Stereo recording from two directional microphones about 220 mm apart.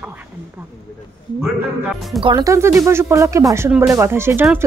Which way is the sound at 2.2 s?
15° right (ahead or behind).